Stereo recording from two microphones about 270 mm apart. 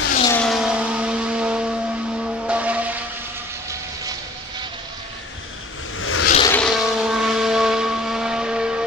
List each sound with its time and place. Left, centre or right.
0.2 s vehicle: centre
5.9 s a sound: left
6.4 s vehicle: centre